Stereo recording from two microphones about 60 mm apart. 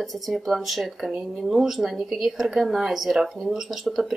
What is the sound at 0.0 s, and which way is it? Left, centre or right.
Speech, centre.